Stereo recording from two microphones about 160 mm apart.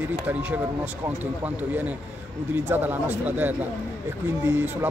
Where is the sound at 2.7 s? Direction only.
10° right (ahead or behind).